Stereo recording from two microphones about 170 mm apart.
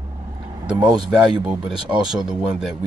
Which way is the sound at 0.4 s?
25° right (ahead or behind).